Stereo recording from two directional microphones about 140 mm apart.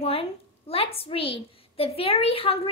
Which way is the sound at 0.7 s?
45° left (ahead or behind).